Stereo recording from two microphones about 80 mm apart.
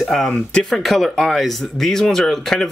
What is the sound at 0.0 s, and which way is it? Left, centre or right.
Speech, centre.